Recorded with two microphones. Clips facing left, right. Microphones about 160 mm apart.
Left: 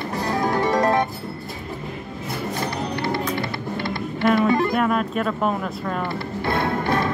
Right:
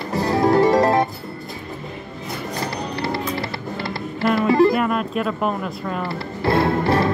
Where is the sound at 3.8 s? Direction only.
5° right (ahead or behind).